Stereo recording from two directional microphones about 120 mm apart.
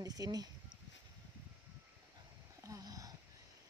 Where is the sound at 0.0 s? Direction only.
30° right (ahead or behind).